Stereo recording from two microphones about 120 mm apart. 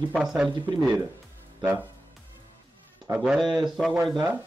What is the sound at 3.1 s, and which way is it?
Speech, 5° right (ahead or behind).